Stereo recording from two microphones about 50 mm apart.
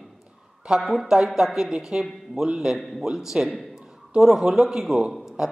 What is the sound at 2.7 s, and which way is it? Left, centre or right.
Speech, centre.